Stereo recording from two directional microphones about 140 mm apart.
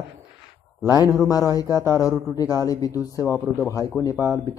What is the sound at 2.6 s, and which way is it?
A man's voice, 25° left (ahead or behind).